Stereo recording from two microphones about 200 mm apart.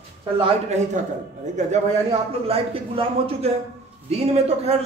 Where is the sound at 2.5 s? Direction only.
30° right (ahead or behind).